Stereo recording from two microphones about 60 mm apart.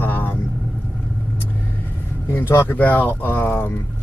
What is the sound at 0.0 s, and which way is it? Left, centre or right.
Vehicle, left.